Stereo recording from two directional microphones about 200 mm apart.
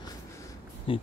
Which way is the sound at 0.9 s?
25° left (ahead or behind).